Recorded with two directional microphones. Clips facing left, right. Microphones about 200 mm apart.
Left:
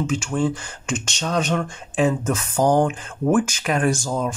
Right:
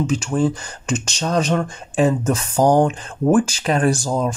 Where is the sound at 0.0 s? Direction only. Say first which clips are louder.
Right 3 dB; 35° right (ahead or behind).